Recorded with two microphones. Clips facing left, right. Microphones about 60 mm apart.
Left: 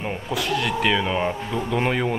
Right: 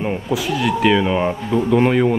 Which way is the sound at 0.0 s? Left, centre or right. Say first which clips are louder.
Right 5 dB; centre.